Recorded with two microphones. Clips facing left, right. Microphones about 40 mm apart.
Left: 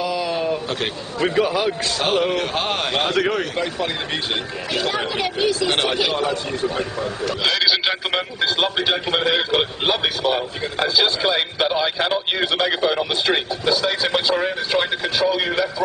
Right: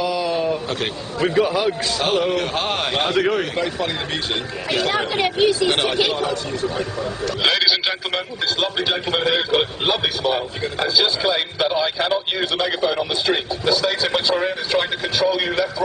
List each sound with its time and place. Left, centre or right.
0.1 s a sound: centre
1.2 s a man's voice: centre
4.7 s a man's voice: centre
8.1 s a man's voice: centre